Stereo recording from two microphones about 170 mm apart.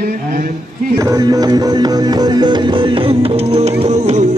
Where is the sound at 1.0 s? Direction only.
20° right (ahead or behind).